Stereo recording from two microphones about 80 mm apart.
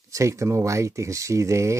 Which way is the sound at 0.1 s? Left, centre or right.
Right.